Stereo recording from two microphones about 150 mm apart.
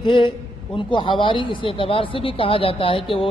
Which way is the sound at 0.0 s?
35° left (ahead or behind).